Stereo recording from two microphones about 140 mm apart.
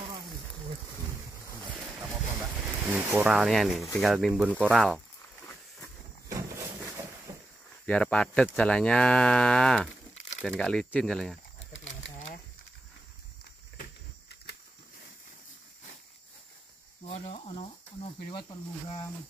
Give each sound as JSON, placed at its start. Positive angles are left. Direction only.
{"t": 2.6, "sound": "speech", "side_deg": -10}
{"t": 6.2, "sound": "a sound", "side_deg": -20}
{"t": 7.8, "sound": "cattle", "side_deg": 10}
{"t": 10.4, "sound": "speech", "side_deg": 5}
{"t": 17.0, "sound": "cricket", "side_deg": 45}